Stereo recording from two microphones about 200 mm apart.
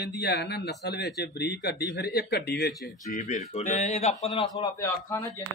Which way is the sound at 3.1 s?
35° left (ahead or behind).